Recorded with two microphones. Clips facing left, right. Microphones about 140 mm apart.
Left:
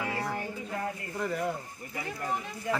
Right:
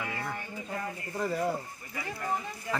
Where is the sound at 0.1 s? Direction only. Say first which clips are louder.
Left 3 dB; 30° left (ahead or behind).